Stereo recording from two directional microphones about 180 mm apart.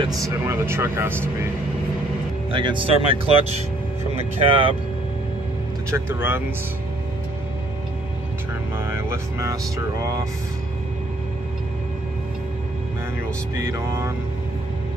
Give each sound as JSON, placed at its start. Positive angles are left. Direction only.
{"t": 0.3, "sound": "speech", "side_deg": -15}
{"t": 2.5, "sound": "speech", "side_deg": -30}
{"t": 5.9, "sound": "speech", "side_deg": -15}
{"t": 8.7, "sound": "speech", "side_deg": -15}
{"t": 13.6, "sound": "speech", "side_deg": -15}